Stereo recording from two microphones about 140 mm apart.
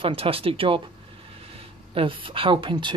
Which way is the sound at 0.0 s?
40° right (ahead or behind).